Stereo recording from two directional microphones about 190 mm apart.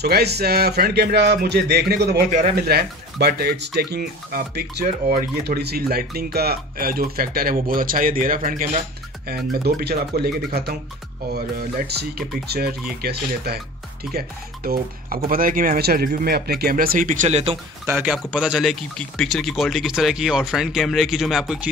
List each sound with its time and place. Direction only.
0.0 s speech: 60° right (ahead or behind)
2.2 s speech: 40° right (ahead or behind)
2.6 s speech: 55° right (ahead or behind)
9.3 s speech: 55° right (ahead or behind); by 17.6 s 35° right (ahead or behind)
17.9 s speech: 5° right (ahead or behind)